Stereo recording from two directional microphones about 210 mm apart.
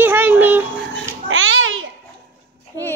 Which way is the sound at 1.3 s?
70° right (ahead or behind).